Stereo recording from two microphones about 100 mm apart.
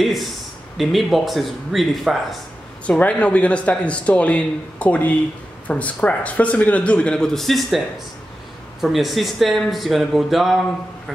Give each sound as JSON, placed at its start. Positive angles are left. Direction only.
{"t": 0.0, "sound": "speech", "side_deg": 0}
{"t": 2.9, "sound": "speech", "side_deg": 10}
{"t": 8.8, "sound": "speech", "side_deg": 0}